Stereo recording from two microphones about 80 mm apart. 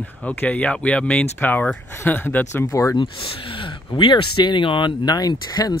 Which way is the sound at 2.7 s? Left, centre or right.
Left.